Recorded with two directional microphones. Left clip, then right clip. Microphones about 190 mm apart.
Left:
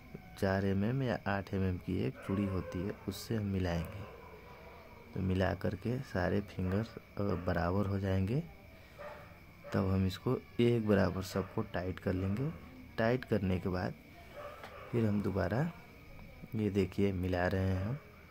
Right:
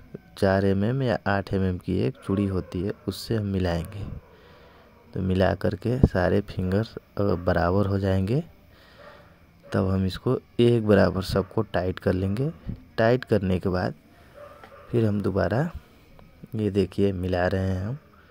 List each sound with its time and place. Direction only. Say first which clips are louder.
0.4 s speech: right 12 dB; 35° right (ahead or behind)
5.1 s speech: right 11 dB; 35° right (ahead or behind)
9.7 s speech: right 9 dB; 30° right (ahead or behind)
15.0 s speech: right 10 dB; 30° right (ahead or behind)